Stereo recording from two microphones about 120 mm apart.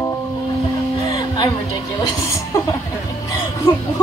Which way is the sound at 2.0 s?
30° left (ahead or behind).